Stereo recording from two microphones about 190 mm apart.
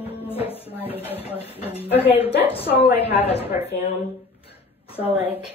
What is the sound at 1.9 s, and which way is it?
A woman's voice, 30° left (ahead or behind).